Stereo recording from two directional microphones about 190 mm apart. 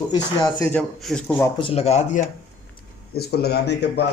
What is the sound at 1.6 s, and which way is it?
Speech, 30° left (ahead or behind).